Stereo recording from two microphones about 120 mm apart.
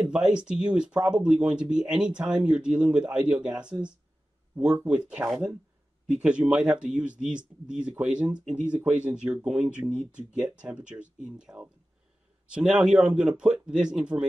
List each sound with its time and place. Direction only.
0.0 s speech: 10° right (ahead or behind)
4.8 s speech: 10° right (ahead or behind)